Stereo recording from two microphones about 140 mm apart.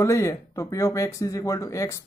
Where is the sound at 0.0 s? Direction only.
20° left (ahead or behind).